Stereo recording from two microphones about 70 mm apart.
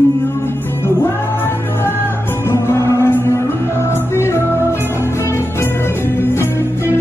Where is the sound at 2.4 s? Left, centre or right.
Left.